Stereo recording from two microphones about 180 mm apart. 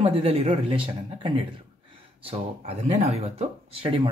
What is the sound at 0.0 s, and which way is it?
Speech, 35° right (ahead or behind).